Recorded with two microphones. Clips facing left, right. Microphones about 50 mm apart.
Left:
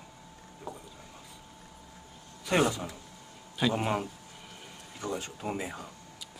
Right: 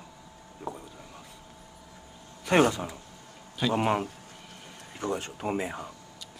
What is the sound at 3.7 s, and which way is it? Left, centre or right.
Speech, right.